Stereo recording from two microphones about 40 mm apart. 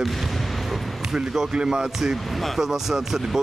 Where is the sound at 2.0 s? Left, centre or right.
Centre.